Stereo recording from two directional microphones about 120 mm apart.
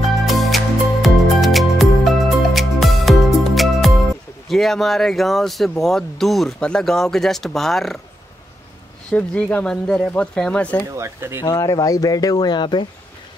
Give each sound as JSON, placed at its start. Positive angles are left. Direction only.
{"t": 0.3, "sound": "music", "side_deg": 0}
{"t": 4.5, "sound": "speech", "side_deg": 0}
{"t": 9.1, "sound": "speech", "side_deg": 10}
{"t": 11.0, "sound": "speech", "side_deg": -20}
{"t": 11.4, "sound": "speech", "side_deg": 25}